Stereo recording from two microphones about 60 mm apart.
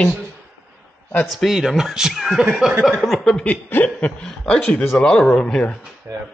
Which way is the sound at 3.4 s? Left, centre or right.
Left.